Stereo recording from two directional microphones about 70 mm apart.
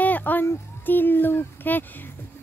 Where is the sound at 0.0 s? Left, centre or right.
Left.